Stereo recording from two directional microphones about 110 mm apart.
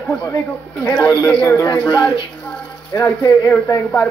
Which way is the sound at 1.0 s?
40° left (ahead or behind).